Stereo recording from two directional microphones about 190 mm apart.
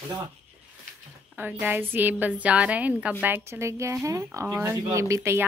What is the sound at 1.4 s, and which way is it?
A woman's voice, 10° right (ahead or behind).